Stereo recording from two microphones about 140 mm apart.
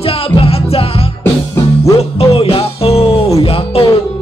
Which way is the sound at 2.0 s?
45° left (ahead or behind).